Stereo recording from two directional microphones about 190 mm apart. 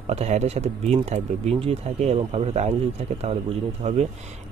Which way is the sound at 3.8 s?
35° right (ahead or behind).